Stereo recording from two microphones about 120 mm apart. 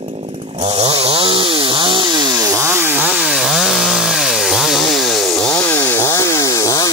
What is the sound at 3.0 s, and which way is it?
Chainsaw, 5° right (ahead or behind).